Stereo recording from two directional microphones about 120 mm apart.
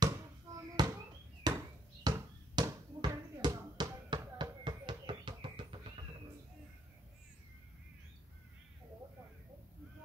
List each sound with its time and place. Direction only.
0.6 s basketball bounce: 30° right (ahead or behind)
1.5 s bouncing: 35° right (ahead or behind)
2.1 s basketball bounce: 35° right (ahead or behind)